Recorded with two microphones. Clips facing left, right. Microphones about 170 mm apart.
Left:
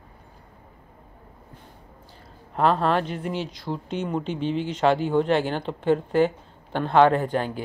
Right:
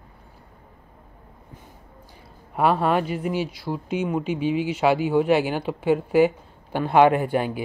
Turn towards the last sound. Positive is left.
turn(degrees=-10)  # may be behind; listen again after turning